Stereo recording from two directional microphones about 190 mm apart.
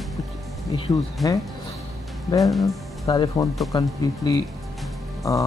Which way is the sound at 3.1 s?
25° left (ahead or behind).